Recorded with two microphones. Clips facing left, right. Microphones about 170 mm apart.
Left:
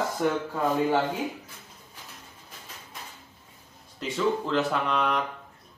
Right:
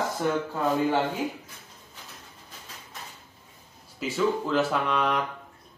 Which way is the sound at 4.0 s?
5° right (ahead or behind).